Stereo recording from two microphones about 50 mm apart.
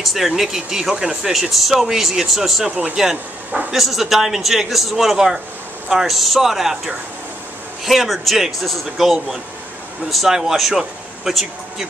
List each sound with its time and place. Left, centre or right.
0.0 s speech: centre
1.3 s speech: centre
2.7 s speech: right
3.7 s speech: centre